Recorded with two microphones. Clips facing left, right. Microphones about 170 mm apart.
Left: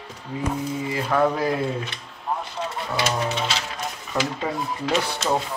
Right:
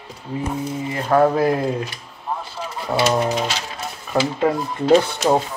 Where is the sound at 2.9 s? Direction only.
35° right (ahead or behind).